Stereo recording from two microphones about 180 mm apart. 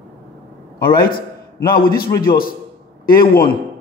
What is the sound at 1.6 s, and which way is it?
Speech, 55° left (ahead or behind).